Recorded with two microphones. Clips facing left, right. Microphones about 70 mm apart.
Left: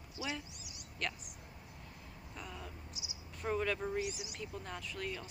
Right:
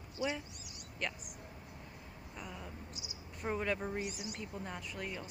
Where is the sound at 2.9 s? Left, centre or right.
Right.